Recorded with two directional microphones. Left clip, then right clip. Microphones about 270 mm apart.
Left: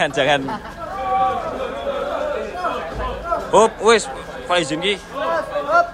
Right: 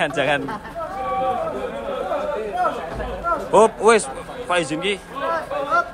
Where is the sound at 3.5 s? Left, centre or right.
Centre.